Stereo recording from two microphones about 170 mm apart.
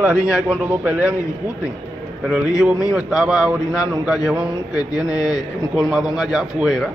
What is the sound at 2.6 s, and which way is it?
A man's voice, 5° right (ahead or behind).